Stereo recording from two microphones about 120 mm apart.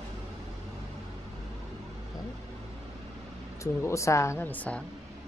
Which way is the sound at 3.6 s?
25° left (ahead or behind).